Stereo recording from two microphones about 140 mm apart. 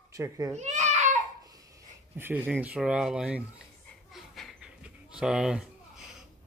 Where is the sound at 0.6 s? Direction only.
55° right (ahead or behind).